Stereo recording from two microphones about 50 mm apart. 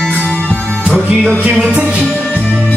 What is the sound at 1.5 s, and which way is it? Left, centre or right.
Music, centre.